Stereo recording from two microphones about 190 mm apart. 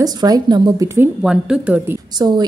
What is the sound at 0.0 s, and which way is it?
A woman's voice, 20° right (ahead or behind).